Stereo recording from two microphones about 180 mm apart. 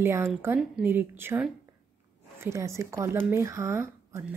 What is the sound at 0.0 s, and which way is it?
A woman's voice, 15° right (ahead or behind).